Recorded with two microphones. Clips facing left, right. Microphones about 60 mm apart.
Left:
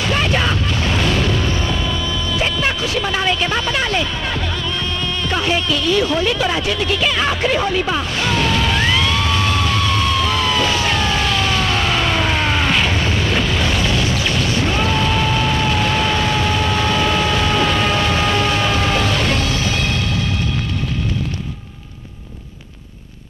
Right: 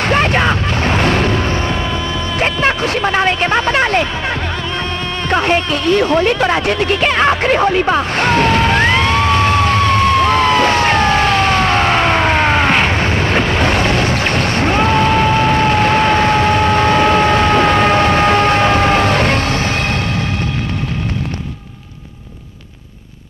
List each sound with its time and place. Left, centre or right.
0.1 s a sound: right
2.4 s music: right
5.3 s speech: right
8.2 s music: right